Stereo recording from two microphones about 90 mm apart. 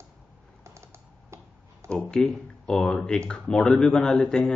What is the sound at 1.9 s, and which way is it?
Speech, 5° left (ahead or behind).